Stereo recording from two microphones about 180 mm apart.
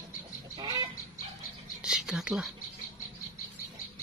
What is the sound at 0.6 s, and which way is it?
Chicken, 20° right (ahead or behind).